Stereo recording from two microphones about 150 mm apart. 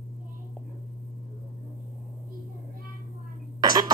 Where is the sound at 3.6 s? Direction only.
25° right (ahead or behind).